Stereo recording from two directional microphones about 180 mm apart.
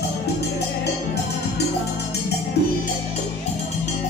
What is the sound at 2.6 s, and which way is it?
Music, 65° left (ahead or behind).